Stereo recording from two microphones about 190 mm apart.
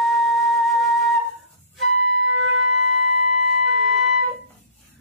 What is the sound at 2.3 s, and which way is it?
Music, 90° right.